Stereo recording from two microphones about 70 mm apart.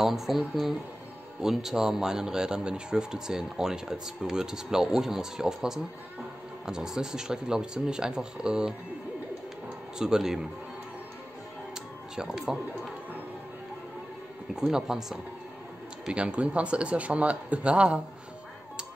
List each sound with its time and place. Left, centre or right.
0.0 s speech: centre
9.9 s speech: centre
12.2 s speech: centre
14.5 s speech: centre